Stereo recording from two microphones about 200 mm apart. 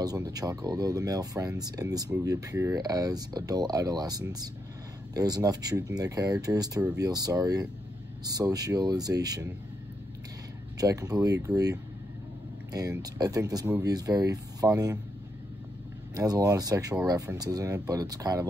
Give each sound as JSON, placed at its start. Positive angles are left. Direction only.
{"t": 0.0, "sound": "speech", "side_deg": -20}
{"t": 10.8, "sound": "speech", "side_deg": -20}
{"t": 16.2, "sound": "speech", "side_deg": -15}